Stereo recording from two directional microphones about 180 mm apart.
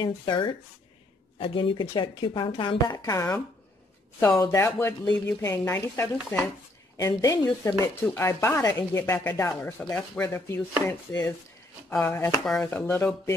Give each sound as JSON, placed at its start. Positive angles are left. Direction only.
{"t": 0.0, "sound": "speech", "side_deg": 25}
{"t": 4.4, "sound": "speech", "side_deg": 15}